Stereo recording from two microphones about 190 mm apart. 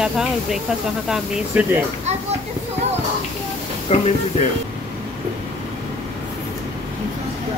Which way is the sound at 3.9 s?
35° left (ahead or behind).